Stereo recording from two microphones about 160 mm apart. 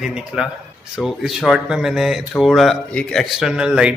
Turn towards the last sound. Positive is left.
turn(degrees=-5)  # may be behind; listen again after turning